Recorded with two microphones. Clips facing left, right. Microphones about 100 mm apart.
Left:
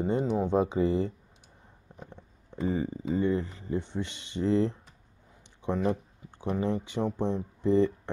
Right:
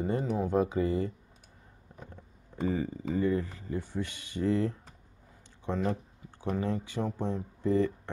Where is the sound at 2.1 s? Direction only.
20° left (ahead or behind).